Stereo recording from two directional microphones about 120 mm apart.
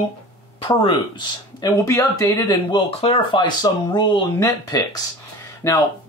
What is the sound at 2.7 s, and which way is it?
Speech, 50° left (ahead or behind).